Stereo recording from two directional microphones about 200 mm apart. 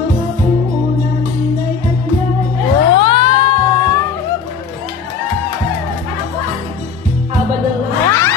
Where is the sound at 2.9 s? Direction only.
25° left (ahead or behind).